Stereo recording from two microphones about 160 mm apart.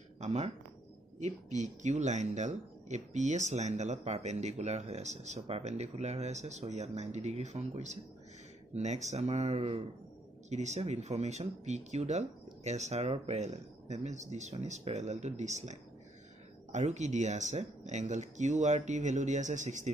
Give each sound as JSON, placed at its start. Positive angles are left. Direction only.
{"t": 0.2, "sound": "speech", "side_deg": -45}